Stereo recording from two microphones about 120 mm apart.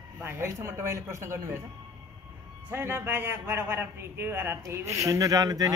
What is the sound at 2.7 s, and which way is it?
A man's voice, 20° right (ahead or behind).